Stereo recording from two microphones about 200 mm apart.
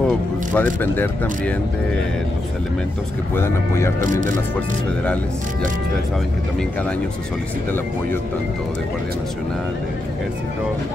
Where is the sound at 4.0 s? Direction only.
40° right (ahead or behind).